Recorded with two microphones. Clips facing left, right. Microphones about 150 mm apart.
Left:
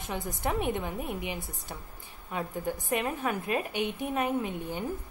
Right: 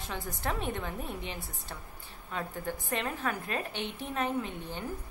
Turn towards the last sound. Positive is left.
turn(degrees=10)  # may be behind; listen again after turning